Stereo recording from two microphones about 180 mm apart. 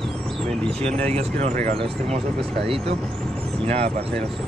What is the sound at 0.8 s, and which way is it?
Speech, 35° right (ahead or behind).